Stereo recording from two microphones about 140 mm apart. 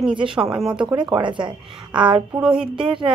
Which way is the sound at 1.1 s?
35° right (ahead or behind).